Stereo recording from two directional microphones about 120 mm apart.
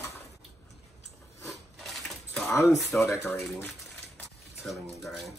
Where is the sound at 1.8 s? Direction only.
Centre (ahead or behind).